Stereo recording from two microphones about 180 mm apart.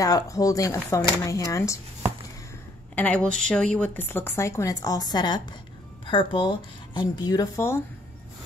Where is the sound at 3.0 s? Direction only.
5° left (ahead or behind).